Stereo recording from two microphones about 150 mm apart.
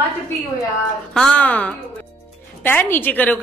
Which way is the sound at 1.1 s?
5° left (ahead or behind).